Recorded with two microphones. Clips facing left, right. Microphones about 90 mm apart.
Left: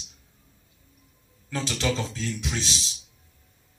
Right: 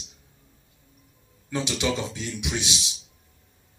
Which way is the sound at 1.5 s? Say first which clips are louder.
Right 1 dB; 15° right (ahead or behind).